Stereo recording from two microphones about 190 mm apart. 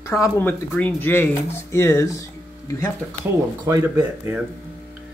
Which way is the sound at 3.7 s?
10° right (ahead or behind).